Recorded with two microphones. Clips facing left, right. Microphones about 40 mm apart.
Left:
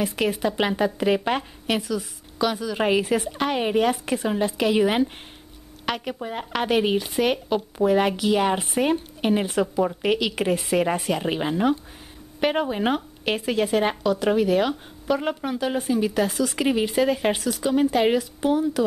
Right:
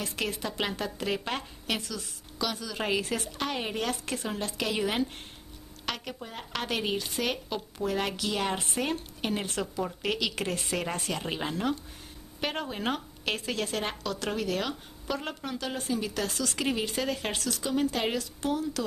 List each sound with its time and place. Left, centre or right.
0.0 s speech: centre